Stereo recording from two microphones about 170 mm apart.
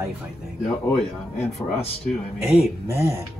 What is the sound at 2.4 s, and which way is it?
Speech, 10° right (ahead or behind).